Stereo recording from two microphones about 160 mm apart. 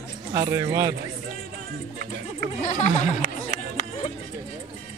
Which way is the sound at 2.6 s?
45° left (ahead or behind).